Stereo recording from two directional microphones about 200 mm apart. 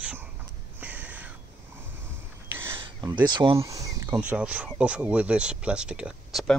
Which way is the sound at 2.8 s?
20° right (ahead or behind).